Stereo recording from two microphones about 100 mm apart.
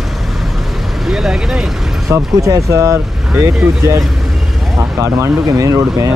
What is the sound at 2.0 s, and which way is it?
Speech, 35° right (ahead or behind).